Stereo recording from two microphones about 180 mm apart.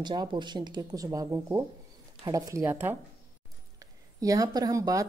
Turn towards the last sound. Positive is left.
turn(degrees=-20)  # may be behind; listen again after turning